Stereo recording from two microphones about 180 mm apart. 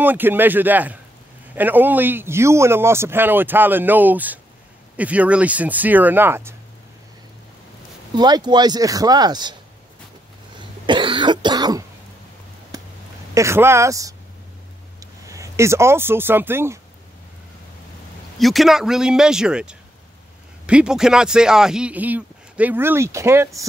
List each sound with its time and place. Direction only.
0.0 s a man's voice: 10° right (ahead or behind)
8.1 s speech: 25° right (ahead or behind)
10.9 s cough: 25° right (ahead or behind)
13.3 s a man's voice: 15° right (ahead or behind)
18.4 s a man's voice: centre (ahead or behind)